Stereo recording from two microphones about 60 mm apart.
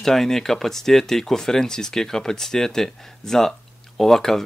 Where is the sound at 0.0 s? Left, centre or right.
Centre.